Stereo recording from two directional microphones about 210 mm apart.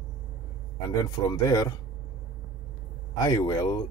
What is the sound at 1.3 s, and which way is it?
Speech, 15° left (ahead or behind).